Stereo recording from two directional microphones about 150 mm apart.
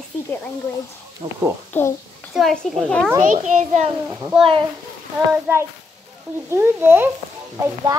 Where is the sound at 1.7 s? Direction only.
15° left (ahead or behind).